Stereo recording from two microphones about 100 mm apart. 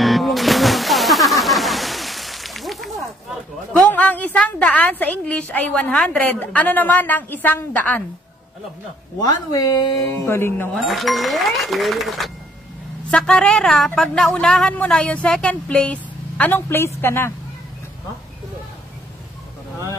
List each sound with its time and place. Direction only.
0.0 s slosh: centre (ahead or behind)
3.9 s a woman's voice: 15° left (ahead or behind)
9.2 s speech: 40° left (ahead or behind)
10.2 s music: 25° left (ahead or behind)
10.7 s speech: centre (ahead or behind); by 16.9 s 25° left (ahead or behind)
17.0 s music: 25° left (ahead or behind)